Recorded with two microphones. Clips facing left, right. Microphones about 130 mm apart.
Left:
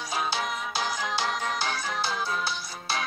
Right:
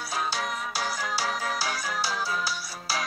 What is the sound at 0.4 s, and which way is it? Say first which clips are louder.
Music: left 1 dB; centre (ahead or behind).